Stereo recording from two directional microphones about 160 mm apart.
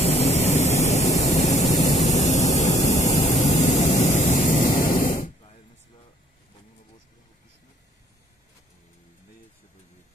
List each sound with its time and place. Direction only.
0.0 s vehicle: 40° left (ahead or behind)
2.9 s a sound: 45° left (ahead or behind)
4.7 s static: 55° left (ahead or behind)